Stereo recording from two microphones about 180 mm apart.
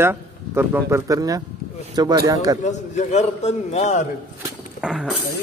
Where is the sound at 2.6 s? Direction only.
40° left (ahead or behind).